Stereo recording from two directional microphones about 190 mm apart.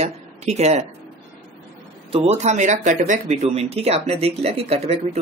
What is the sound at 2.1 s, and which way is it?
Speech, 35° right (ahead or behind).